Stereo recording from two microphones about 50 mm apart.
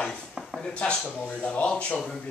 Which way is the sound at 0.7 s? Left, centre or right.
Left.